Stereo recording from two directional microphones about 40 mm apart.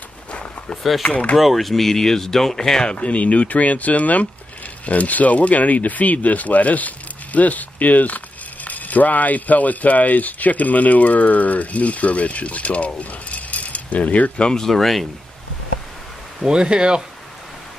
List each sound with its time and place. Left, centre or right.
0.3 s a sound: left
1.0 s speech: left
1.4 s speech: centre
2.9 s speech: left
14.5 s speech: centre
16.4 s speech: right